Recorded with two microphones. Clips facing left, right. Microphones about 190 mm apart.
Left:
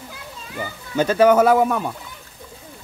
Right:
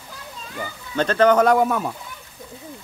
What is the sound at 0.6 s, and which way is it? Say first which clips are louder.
Speech: left 2 dB; 10° left (ahead or behind).